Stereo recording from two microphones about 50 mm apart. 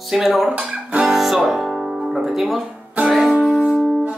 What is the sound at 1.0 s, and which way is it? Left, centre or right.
Music, centre.